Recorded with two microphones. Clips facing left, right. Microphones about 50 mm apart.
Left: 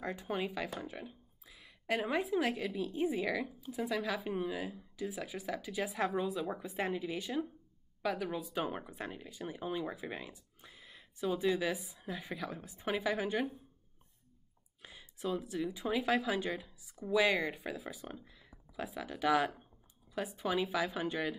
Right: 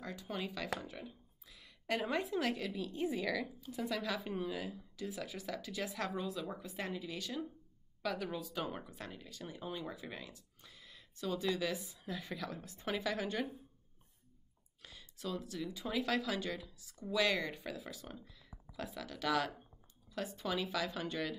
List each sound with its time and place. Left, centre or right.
0.0 s speech: left
14.8 s speech: centre